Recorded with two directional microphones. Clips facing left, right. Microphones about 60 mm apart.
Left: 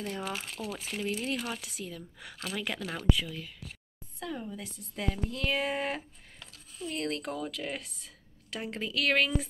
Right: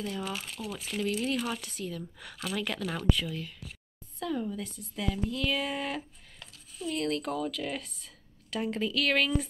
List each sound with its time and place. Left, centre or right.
0.0 s speech: left
0.8 s speech: left
4.9 s a woman's voice: left